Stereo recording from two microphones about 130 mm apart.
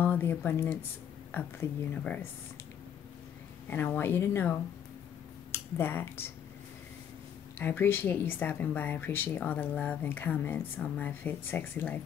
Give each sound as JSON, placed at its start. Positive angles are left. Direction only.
{"t": 0.0, "sound": "a woman's voice", "side_deg": 15}
{"t": 3.6, "sound": "a woman's voice", "side_deg": 10}
{"t": 7.5, "sound": "a woman's voice", "side_deg": 15}